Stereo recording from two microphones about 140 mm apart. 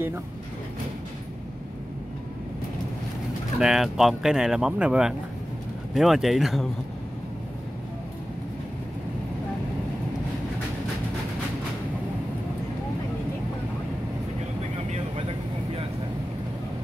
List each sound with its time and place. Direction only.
3.5 s speech: 5° right (ahead or behind)
14.9 s vehicle: 45° right (ahead or behind)